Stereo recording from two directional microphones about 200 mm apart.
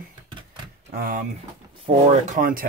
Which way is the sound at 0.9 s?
45° right (ahead or behind).